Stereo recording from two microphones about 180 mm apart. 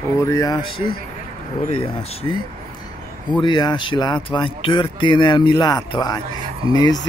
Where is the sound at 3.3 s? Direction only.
25° left (ahead or behind).